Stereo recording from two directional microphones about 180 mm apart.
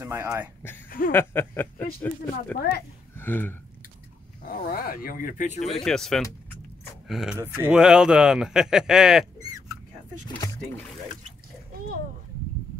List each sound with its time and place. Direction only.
0.0 s speech: 10° right (ahead or behind)
0.8 s a sound: 50° left (ahead or behind)
1.1 s a sound: 15° left (ahead or behind)
3.2 s speech: 10° left (ahead or behind)
4.4 s speech: 50° left (ahead or behind)
5.6 s a man's voice: centre (ahead or behind)
10.3 s boat: 20° left (ahead or behind)